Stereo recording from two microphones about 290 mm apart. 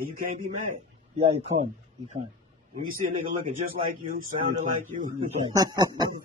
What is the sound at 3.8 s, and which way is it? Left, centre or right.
Speech, right.